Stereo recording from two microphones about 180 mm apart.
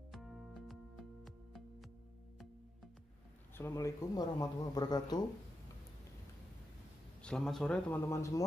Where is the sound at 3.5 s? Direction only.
15° left (ahead or behind).